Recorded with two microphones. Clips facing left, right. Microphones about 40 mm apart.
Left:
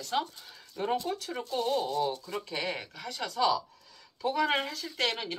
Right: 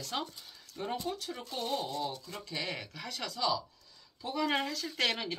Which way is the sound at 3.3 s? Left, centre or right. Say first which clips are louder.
Left 5 dB; left.